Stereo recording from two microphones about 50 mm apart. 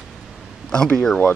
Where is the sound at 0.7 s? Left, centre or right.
Centre.